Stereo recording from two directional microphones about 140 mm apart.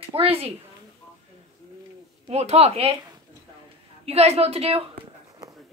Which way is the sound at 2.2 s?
50° right (ahead or behind).